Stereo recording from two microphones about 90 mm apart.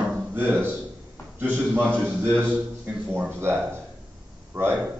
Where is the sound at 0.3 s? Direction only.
20° right (ahead or behind).